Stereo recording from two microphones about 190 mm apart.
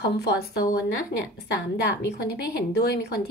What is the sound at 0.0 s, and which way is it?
Speech, 60° left (ahead or behind).